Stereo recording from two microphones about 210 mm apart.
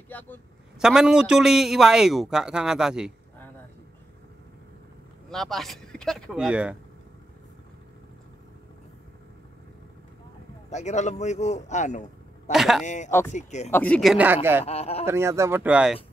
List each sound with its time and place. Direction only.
0.1 s speech: 10° left (ahead or behind)
0.7 s a man's voice: 5° right (ahead or behind)
5.3 s a man's voice: centre (ahead or behind)
10.7 s a man's voice: 35° left (ahead or behind)
12.5 s a man's voice: centre (ahead or behind)
12.8 s speech: 35° left (ahead or behind)
13.7 s speech: 10° left (ahead or behind)
14.1 s speech: 10° right (ahead or behind)
14.6 s a man's voice: 30° left (ahead or behind)
15.0 s speech: 15° right (ahead or behind)